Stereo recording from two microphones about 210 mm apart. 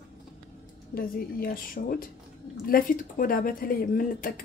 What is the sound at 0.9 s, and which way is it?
A woman's voice, 45° left (ahead or behind).